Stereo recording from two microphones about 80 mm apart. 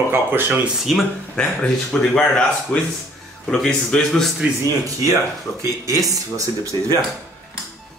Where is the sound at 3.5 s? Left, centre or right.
Centre.